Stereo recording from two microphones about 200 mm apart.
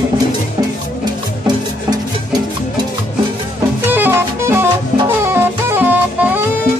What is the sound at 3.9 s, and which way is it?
Music, 10° right (ahead or behind).